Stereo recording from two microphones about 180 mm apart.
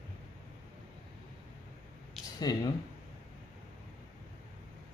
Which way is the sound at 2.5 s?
20° left (ahead or behind).